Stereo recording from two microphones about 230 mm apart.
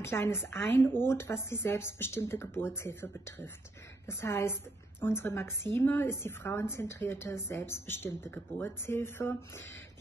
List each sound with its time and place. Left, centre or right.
0.0 s a woman's voice: centre